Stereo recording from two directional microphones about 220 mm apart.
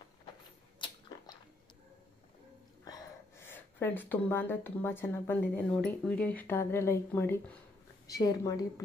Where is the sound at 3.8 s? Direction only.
10° left (ahead or behind).